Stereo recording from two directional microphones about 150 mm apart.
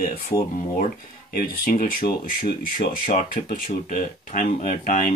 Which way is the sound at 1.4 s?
75° left (ahead or behind).